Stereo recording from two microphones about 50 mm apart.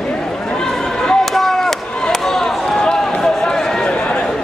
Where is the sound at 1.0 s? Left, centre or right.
Centre.